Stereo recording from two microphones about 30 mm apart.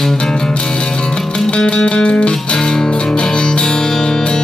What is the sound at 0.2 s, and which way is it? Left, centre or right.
Music, left.